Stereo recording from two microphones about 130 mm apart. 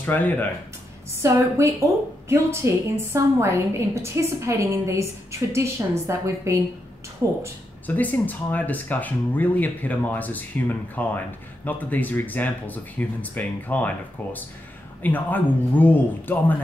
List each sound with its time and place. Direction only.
0.0 s speech: 15° left (ahead or behind)
1.2 s a woman's voice: 20° right (ahead or behind)
7.8 s speech: 15° left (ahead or behind)